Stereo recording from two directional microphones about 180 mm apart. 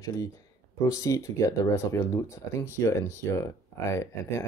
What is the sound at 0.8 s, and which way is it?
Speech, 15° left (ahead or behind).